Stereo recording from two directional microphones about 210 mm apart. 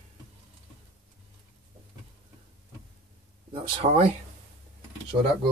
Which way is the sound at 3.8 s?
30° right (ahead or behind).